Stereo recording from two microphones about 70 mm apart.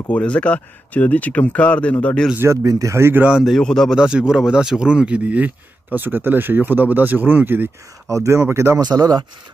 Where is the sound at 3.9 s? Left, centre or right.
Centre; by 7.7 s right.